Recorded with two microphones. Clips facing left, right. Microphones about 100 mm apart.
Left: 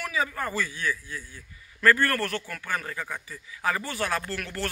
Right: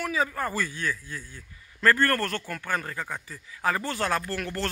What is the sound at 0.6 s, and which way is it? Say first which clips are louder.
Speech: even; 50° right (ahead or behind).